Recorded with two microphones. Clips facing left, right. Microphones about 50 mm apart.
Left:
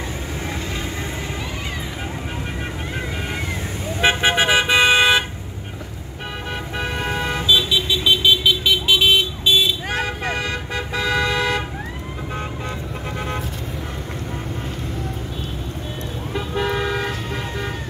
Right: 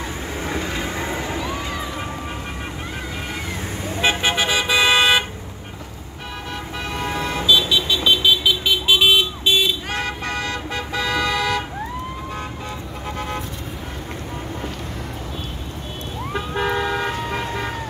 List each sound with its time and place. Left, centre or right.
4.0 s vehicle: left
6.8 s vehicle: left
7.7 s vehicle: centre
9.9 s toot: centre
16.5 s toot: centre